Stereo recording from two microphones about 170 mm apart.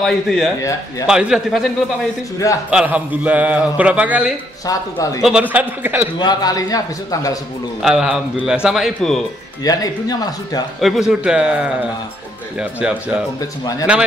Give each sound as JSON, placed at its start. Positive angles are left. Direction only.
{"t": 0.0, "sound": "a man's voice", "side_deg": 0}
{"t": 0.6, "sound": "a man's voice", "side_deg": 20}
{"t": 1.0, "sound": "a man's voice", "side_deg": -5}
{"t": 4.6, "sound": "a man's voice", "side_deg": 20}
{"t": 5.2, "sound": "a man's voice", "side_deg": -5}
{"t": 6.1, "sound": "a man's voice", "side_deg": 25}
{"t": 7.8, "sound": "a man's voice", "side_deg": -5}
{"t": 9.6, "sound": "a man's voice", "side_deg": 25}
{"t": 10.8, "sound": "a man's voice", "side_deg": 0}
{"t": 13.4, "sound": "a man's voice", "side_deg": 20}